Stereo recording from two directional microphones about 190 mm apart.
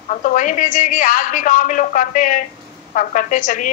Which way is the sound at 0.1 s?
45° left (ahead or behind).